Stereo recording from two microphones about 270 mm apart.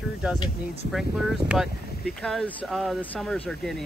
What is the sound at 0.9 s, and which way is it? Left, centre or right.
Speech, centre.